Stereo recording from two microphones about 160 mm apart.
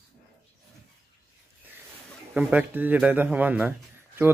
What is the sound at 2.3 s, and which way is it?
Speech, 10° right (ahead or behind).